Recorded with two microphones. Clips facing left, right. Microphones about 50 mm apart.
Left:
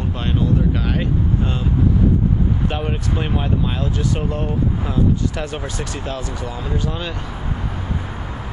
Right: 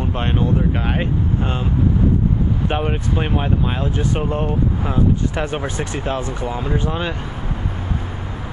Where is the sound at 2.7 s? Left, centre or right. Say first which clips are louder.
Right 2 dB; right.